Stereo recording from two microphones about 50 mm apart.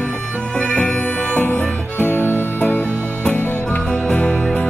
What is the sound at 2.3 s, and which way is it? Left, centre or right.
Music, right.